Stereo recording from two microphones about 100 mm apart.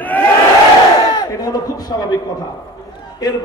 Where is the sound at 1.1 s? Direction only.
40° left (ahead or behind).